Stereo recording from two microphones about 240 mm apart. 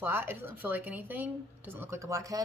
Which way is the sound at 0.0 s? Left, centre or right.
Centre.